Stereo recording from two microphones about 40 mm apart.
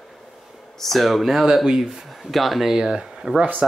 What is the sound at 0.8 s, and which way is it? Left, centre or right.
Speech, centre.